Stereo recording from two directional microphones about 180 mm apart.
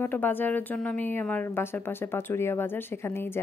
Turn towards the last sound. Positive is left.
turn(degrees=15)  # may be behind; listen again after turning